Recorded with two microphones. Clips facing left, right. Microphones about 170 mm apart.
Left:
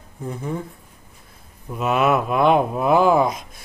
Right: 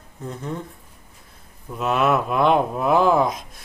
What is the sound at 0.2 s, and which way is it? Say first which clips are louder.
Speech: left 3 dB; 5° left (ahead or behind).